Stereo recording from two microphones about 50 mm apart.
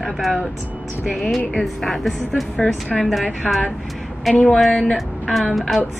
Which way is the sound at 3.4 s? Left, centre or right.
Centre.